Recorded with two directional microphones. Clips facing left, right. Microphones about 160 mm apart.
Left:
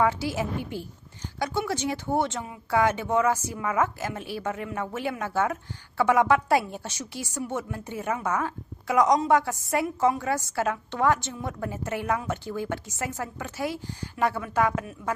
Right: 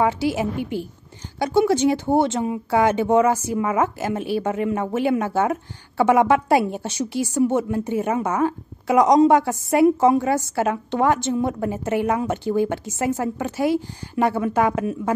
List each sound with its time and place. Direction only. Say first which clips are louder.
1.4 s a woman's voice: right 10 dB; 30° right (ahead or behind)